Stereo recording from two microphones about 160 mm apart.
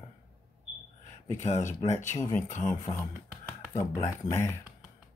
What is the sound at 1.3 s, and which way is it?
Speech, 45° left (ahead or behind).